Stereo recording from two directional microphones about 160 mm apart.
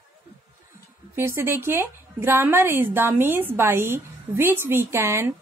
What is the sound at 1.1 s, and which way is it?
A woman's voice, 15° right (ahead or behind).